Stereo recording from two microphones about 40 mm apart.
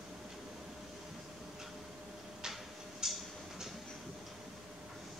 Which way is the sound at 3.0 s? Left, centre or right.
Centre.